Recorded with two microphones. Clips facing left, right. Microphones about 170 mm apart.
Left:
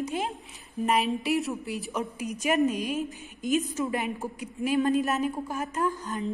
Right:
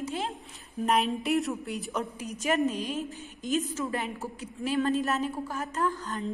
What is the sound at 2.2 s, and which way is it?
A woman's voice, 15° left (ahead or behind).